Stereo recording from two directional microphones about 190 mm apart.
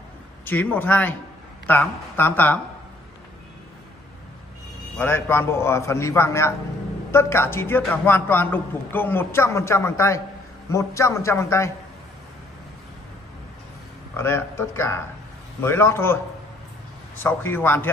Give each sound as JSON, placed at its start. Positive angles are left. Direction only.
{"t": 0.5, "sound": "a man's voice", "side_deg": 10}
{"t": 4.9, "sound": "a man's voice", "side_deg": 10}
{"t": 14.1, "sound": "a man's voice", "side_deg": 15}
{"t": 17.2, "sound": "a man's voice", "side_deg": 10}